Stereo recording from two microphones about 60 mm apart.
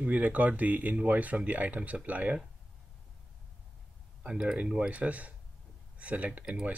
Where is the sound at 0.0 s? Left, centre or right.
Right.